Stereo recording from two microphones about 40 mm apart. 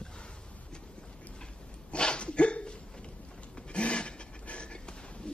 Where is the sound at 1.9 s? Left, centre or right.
Left.